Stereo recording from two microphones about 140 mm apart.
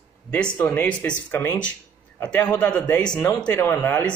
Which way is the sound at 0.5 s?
15° left (ahead or behind).